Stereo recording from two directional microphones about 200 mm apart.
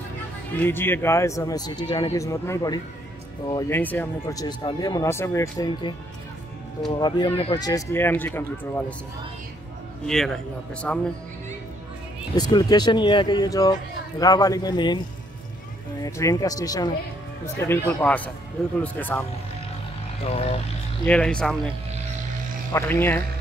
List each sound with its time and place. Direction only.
0.6 s speech: 10° left (ahead or behind)
10.0 s a man's voice: centre (ahead or behind)
12.4 s speech: 20° left (ahead or behind)
16.0 s speech: 15° left (ahead or behind)
20.2 s speech: 30° left (ahead or behind)
21.0 s a man's voice: 5° left (ahead or behind)
22.7 s speech: 10° left (ahead or behind)